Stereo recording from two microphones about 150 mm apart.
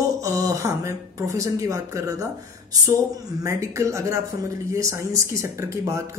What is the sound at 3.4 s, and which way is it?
Speech, 20° right (ahead or behind).